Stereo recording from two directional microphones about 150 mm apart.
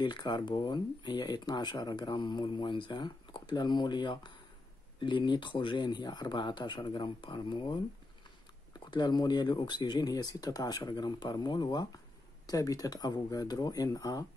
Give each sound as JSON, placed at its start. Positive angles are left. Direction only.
{"t": 0.0, "sound": "speech", "side_deg": 30}